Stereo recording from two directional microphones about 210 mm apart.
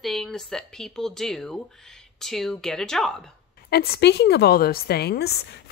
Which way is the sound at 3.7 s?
50° left (ahead or behind).